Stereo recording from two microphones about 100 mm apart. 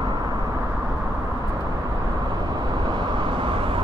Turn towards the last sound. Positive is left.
turn(degrees=-60)  # may be behind; listen again after turning